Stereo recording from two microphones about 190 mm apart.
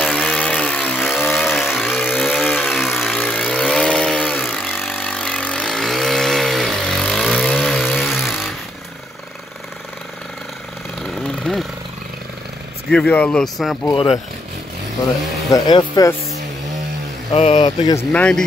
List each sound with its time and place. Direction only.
0.0 s a sound: 5° left (ahead or behind)
1.5 s vehicle: centre (ahead or behind)
3.6 s chainsaw: 5° left (ahead or behind)
4.5 s vehicle: centre (ahead or behind)
11.0 s vehicle: centre (ahead or behind)
12.9 s speech: 5° left (ahead or behind)
13.8 s speech: 20° left (ahead or behind)
15.5 s speech: 20° left (ahead or behind)
17.3 s speech: 35° left (ahead or behind)
17.6 s speech: 20° left (ahead or behind)
18.1 s speech: 5° left (ahead or behind)